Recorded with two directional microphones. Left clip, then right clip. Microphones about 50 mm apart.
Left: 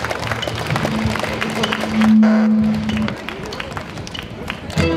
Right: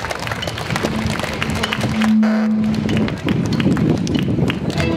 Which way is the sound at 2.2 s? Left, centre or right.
Right.